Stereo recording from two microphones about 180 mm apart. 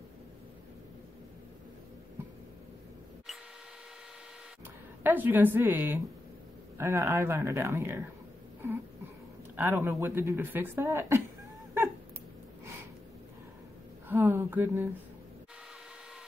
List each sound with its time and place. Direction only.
5.0 s speech: 10° right (ahead or behind)
9.6 s speech: 15° right (ahead or behind)
14.0 s speech: 15° right (ahead or behind)